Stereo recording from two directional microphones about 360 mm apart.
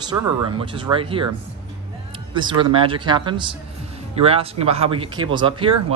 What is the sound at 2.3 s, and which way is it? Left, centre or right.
Speech, centre.